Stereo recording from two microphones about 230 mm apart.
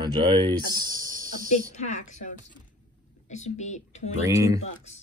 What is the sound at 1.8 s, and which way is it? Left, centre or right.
Speech, left.